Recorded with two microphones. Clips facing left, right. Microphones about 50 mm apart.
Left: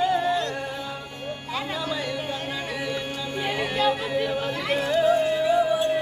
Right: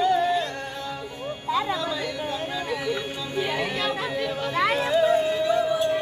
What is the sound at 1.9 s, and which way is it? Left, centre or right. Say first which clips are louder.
Music: even; centre.